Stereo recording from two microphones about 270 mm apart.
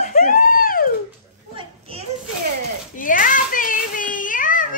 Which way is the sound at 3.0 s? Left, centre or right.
Left.